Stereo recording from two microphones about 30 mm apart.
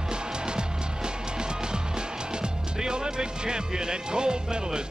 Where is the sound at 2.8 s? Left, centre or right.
Right.